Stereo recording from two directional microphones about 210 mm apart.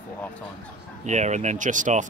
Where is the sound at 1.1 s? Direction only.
35° right (ahead or behind).